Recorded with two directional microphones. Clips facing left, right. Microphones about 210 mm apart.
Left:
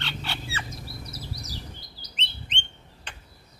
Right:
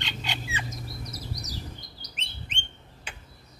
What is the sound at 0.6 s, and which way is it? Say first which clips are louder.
Bird: right 1 dB; 30° left (ahead or behind).